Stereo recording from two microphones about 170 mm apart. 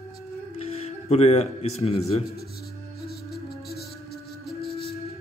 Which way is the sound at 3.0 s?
65° left (ahead or behind).